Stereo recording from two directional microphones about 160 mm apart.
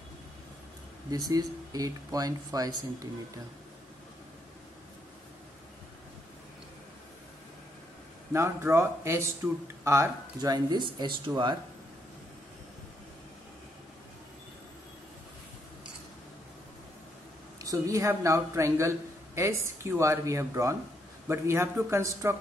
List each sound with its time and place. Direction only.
1.1 s a man's voice: 20° right (ahead or behind)
8.3 s a man's voice: 15° right (ahead or behind)
17.6 s a man's voice: 20° right (ahead or behind)